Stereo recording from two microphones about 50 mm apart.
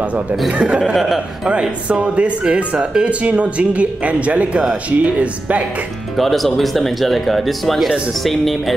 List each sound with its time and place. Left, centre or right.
0.0 s speech: right
6.1 s speech: centre